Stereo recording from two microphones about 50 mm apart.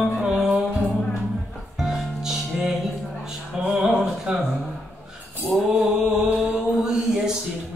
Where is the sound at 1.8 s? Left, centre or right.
Centre.